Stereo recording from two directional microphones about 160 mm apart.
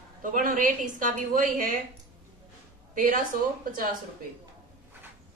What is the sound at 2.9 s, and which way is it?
Speech, 55° right (ahead or behind).